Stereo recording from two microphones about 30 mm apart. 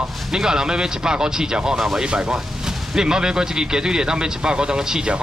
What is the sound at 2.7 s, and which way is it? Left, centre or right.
Speech, right.